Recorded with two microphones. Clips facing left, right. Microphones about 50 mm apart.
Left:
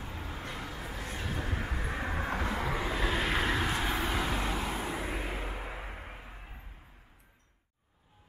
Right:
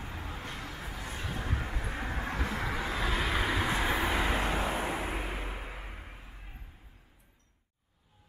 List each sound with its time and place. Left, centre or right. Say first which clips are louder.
0.6 s a sound: left 1 dB; centre
1.1 s train: even; centre
2.1 s vehicle: left 1 dB; centre
3.7 s vehicle: right 2 dB; centre
4.9 s vehicle: right 1 dB; centre
5.2 s vehicle: left 1 dB; centre